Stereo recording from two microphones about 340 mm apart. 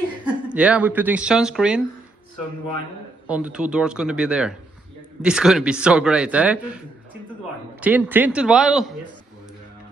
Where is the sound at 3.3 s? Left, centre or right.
Centre.